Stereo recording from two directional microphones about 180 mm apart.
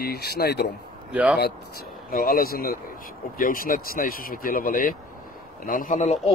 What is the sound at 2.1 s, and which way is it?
Speech, 55° left (ahead or behind).